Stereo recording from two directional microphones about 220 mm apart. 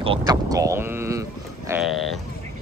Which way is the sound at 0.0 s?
20° right (ahead or behind).